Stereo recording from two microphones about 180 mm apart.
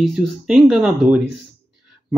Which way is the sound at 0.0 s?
Centre (ahead or behind).